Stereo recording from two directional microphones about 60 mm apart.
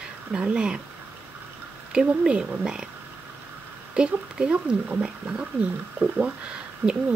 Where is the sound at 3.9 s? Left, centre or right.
Centre.